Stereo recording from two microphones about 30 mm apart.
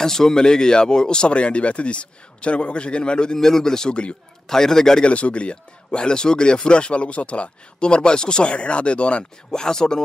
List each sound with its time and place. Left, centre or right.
0.0 s speech: centre
1.3 s speech: left
3.3 s a man's voice: centre
3.9 s speech: left
4.5 s a man's voice: centre
5.0 s speech: left
8.5 s speech: left
9.5 s speech: centre